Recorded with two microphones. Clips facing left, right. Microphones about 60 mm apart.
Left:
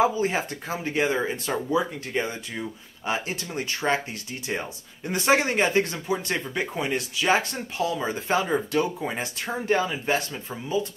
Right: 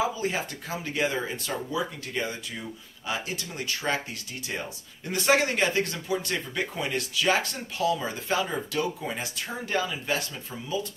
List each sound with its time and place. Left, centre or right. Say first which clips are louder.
0.0 s speech: left 5 dB; left